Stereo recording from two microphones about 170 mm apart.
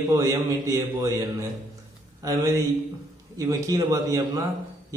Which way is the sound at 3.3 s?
20° right (ahead or behind).